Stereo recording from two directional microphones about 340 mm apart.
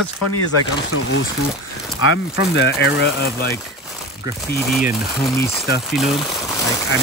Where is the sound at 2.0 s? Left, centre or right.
Left.